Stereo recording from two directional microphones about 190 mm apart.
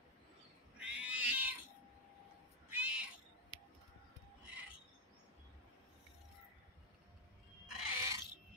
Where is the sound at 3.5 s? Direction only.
30° left (ahead or behind).